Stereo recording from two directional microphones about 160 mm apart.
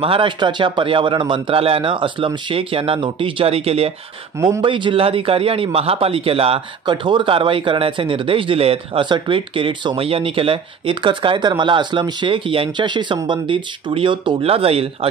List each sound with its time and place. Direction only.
0.0 s a man's voice: 35° right (ahead or behind)
4.4 s a man's voice: 25° right (ahead or behind)